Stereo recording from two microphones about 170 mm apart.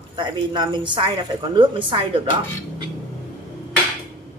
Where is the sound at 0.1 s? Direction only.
25° right (ahead or behind).